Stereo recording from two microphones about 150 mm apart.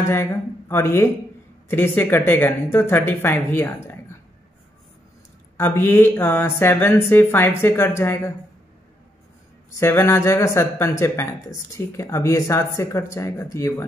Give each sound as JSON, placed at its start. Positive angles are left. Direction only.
{"t": 0.0, "sound": "speech", "side_deg": 20}
{"t": 5.6, "sound": "speech", "side_deg": 15}
{"t": 9.8, "sound": "speech", "side_deg": 20}